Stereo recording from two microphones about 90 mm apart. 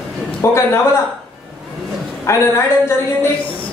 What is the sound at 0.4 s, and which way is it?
Speech, 35° left (ahead or behind).